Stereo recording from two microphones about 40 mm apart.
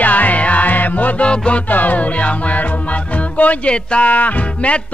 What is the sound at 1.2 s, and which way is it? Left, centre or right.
Music, left.